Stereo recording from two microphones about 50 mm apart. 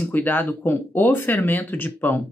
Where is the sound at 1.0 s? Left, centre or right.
Left.